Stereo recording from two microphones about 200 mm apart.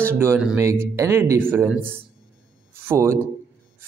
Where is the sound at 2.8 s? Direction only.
15° right (ahead or behind).